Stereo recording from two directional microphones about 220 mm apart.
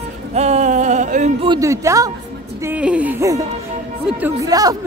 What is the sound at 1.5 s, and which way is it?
Speech, 15° right (ahead or behind).